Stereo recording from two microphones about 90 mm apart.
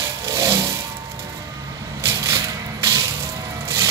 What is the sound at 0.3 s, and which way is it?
Music, 35° right (ahead or behind).